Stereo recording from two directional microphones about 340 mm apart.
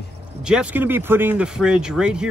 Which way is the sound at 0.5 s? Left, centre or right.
Centre.